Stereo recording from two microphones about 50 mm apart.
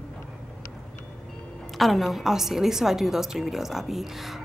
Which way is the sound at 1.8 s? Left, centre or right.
Centre.